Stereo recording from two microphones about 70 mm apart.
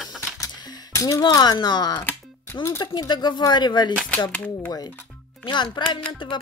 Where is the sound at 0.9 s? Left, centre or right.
Left.